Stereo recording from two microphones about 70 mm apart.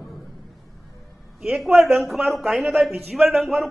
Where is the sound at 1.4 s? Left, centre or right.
Centre.